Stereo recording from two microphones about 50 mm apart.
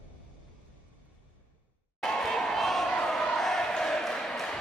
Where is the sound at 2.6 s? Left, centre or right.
Centre.